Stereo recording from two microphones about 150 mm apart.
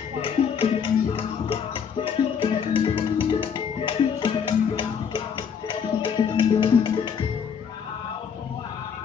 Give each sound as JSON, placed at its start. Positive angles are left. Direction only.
{"t": 0.2, "sound": "music", "side_deg": 35}